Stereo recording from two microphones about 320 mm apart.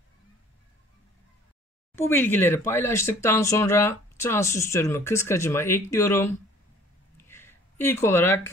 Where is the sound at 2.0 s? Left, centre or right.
Centre.